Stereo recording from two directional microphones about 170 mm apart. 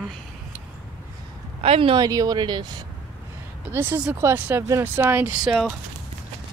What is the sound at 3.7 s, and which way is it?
A woman's voice, 15° right (ahead or behind).